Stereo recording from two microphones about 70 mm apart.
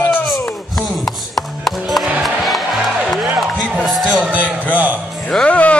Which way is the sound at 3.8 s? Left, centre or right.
Centre.